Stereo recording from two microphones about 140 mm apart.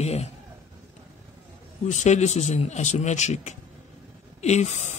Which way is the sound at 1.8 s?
55° left (ahead or behind).